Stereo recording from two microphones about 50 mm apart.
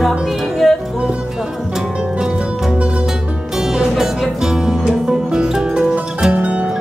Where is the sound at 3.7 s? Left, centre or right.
Centre.